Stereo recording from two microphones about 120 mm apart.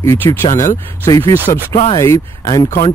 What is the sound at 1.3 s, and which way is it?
Speech, 20° left (ahead or behind).